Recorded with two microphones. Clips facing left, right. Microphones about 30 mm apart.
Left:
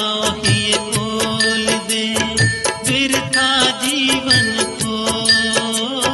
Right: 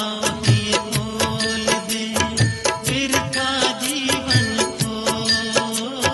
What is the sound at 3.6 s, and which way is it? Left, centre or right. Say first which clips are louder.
Music: left 5 dB; left.